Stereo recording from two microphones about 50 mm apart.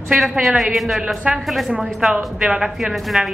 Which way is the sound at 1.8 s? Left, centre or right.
Centre.